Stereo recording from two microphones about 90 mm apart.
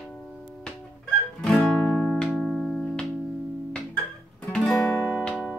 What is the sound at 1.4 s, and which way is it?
Music, 5° left (ahead or behind).